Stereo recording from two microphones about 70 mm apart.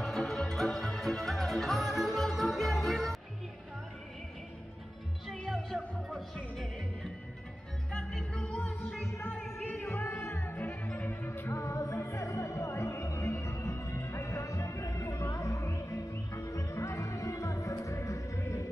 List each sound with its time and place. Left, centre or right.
0.0 s music: centre
5.3 s music: centre
8.3 s music: centre
9.8 s music: left